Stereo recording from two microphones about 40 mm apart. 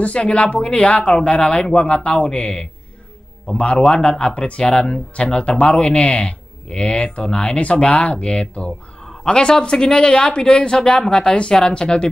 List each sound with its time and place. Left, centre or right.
0.0 s speech: left
9.2 s speech: left